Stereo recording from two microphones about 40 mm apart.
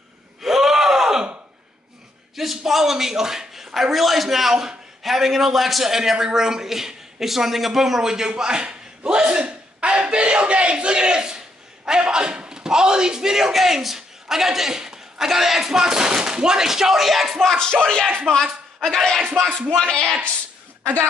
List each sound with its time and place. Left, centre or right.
0.4 s gasp: centre
2.3 s a man's voice: centre
8.4 s a sound: centre
14.3 s a man's voice: centre
17.4 s music: centre
18.3 s a man's voice: centre